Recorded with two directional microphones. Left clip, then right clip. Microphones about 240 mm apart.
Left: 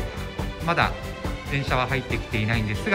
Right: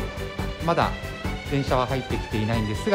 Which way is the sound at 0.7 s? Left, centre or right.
Centre.